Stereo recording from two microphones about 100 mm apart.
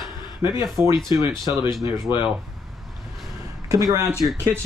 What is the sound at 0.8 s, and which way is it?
Speech, 50° left (ahead or behind).